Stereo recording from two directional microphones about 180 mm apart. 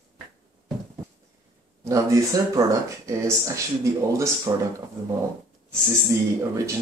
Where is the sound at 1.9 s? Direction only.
20° right (ahead or behind).